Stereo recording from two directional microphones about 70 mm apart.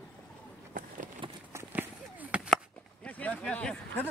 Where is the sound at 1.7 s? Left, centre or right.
Right.